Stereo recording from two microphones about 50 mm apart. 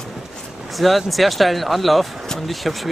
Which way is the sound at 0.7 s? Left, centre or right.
Centre.